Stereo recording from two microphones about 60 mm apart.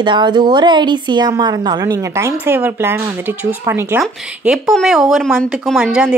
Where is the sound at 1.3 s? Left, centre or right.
Right.